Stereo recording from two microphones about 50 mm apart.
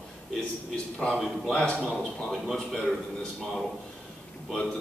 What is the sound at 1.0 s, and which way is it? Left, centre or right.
A man's voice, centre.